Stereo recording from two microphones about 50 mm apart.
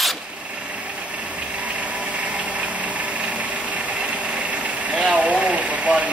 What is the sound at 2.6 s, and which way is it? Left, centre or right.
Engine, right.